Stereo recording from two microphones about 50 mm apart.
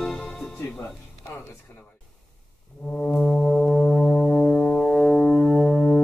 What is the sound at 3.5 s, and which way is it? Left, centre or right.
Foghorn, centre.